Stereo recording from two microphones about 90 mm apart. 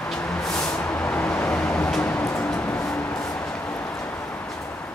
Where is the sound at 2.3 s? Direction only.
10° left (ahead or behind).